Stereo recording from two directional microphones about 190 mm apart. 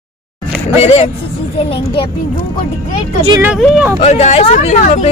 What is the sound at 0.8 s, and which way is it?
Speech, 35° left (ahead or behind).